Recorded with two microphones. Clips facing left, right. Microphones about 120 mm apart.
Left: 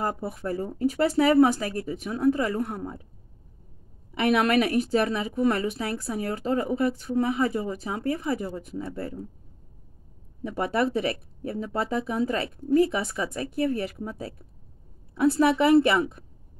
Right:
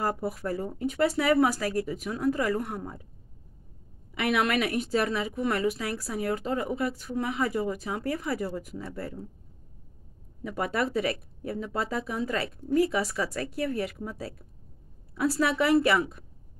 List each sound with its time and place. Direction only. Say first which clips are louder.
0.2 s a woman's voice: left 1 dB; 25° left (ahead or behind)
4.1 s a woman's voice: left 4 dB; 35° left (ahead or behind)
10.4 s a woman's voice: left 4 dB; 30° left (ahead or behind)